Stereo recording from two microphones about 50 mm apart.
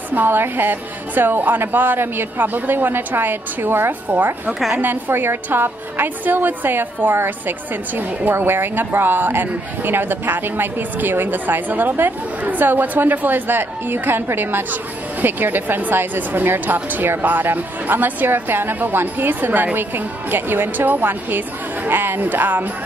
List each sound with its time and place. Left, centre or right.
0.1 s a woman's voice: right
5.1 s a woman's voice: right